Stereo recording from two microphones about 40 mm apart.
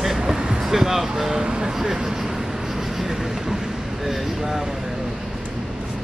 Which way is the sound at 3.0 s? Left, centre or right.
Centre.